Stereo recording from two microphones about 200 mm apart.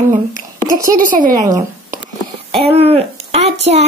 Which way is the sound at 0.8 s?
40° right (ahead or behind).